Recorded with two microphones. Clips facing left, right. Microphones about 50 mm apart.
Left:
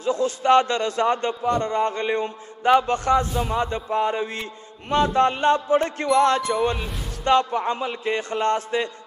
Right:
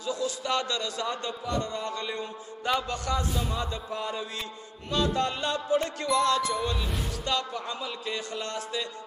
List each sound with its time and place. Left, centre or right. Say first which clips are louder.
0.0 s a man's voice: left 9 dB; left